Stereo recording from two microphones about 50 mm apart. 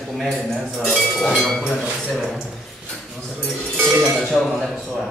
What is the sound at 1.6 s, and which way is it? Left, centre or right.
Speech, right.